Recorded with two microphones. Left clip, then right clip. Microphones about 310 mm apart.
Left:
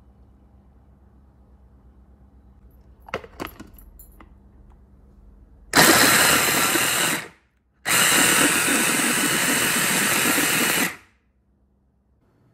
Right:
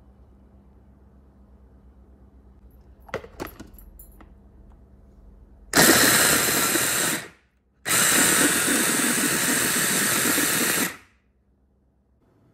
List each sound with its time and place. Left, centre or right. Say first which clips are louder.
3.3 s keys jangling: left 2 dB; centre
5.9 s a sound: left 3 dB; centre
7.9 s hiss: left 3 dB; centre